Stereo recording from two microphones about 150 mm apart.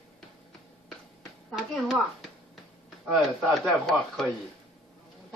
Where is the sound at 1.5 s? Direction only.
Centre (ahead or behind).